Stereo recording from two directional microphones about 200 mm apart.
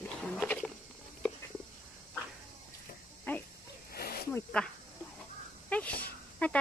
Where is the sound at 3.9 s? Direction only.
50° left (ahead or behind).